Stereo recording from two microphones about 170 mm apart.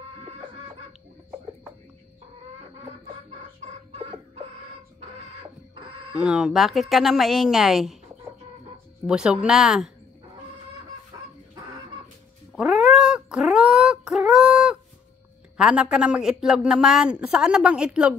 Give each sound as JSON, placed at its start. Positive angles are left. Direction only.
{"t": 3.6, "sound": "chicken", "side_deg": -40}
{"t": 6.1, "sound": "speech", "side_deg": -5}
{"t": 9.0, "sound": "speech", "side_deg": -5}
{"t": 12.5, "sound": "cat", "side_deg": -5}
{"t": 15.5, "sound": "speech", "side_deg": -5}